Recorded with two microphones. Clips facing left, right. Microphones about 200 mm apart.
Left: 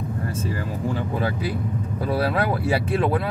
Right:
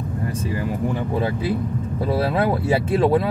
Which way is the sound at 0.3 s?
15° right (ahead or behind).